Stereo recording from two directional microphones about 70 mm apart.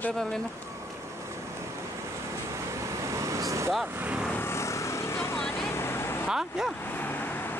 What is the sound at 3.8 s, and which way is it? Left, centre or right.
Speech, right.